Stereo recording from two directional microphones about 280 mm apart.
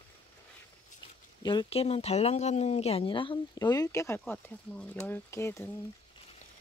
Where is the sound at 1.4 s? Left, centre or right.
Centre.